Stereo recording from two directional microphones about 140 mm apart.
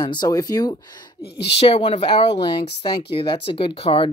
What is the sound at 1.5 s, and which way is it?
Speech, 45° left (ahead or behind).